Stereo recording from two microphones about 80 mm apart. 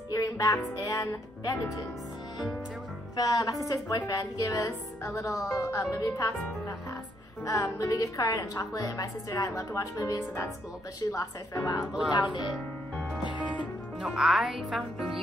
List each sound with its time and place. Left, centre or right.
0.1 s speech: left
3.2 s speech: left
7.4 s speech: left
11.8 s music: centre
12.1 s speech: left
13.2 s music: left
14.0 s speech: centre